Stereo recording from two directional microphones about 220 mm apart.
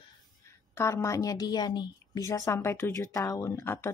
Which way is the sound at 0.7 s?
15° left (ahead or behind).